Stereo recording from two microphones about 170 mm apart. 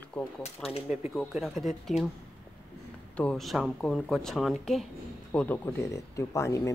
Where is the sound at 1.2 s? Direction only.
Centre (ahead or behind).